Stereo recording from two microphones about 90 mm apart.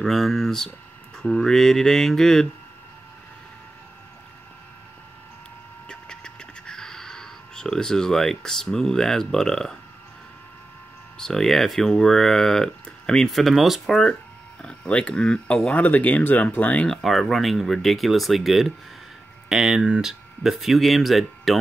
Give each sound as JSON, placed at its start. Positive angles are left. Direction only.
{"t": 0.0, "sound": "speech", "side_deg": 5}
{"t": 5.9, "sound": "a sound", "side_deg": 10}
{"t": 11.1, "sound": "speech", "side_deg": 5}
{"t": 16.8, "sound": "speech", "side_deg": 5}